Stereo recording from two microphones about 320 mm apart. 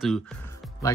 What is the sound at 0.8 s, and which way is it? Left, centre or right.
Speech, centre.